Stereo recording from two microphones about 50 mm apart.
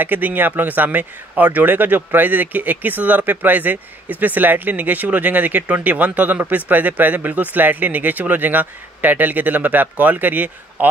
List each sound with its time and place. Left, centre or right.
0.0 s a man's voice: right